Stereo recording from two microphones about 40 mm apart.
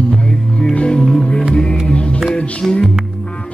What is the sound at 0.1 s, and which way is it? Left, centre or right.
Music, left.